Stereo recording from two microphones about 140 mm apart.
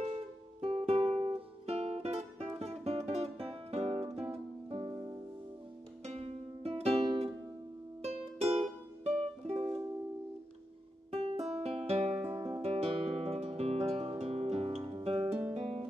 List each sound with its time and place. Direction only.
0.1 s music: 40° right (ahead or behind)
4.9 s music: 25° right (ahead or behind)
6.0 s music: 45° right (ahead or behind)
11.1 s music: 45° right (ahead or behind)